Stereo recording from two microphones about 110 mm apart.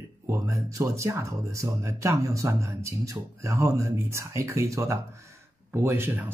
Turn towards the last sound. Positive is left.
turn(degrees=-20)  # may be behind; listen again after turning